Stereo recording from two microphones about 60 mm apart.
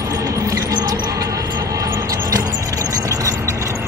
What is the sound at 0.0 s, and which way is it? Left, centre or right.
Music, right.